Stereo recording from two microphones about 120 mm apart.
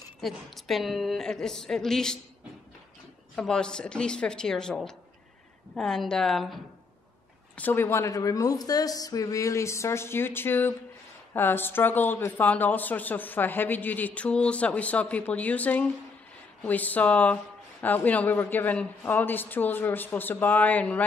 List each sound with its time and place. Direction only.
0.2 s a woman's voice: centre (ahead or behind)
3.3 s a woman's voice: 5° left (ahead or behind)
7.5 s a woman's voice: 15° left (ahead or behind)